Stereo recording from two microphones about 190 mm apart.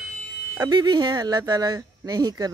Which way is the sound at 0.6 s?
20° right (ahead or behind).